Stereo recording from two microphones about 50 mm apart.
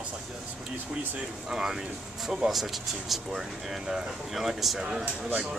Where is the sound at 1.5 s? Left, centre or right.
Centre.